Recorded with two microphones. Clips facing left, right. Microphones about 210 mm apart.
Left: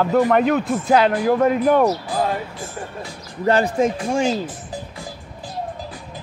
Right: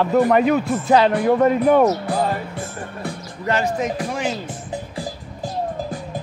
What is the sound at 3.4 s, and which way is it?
Speech, 35° left (ahead or behind).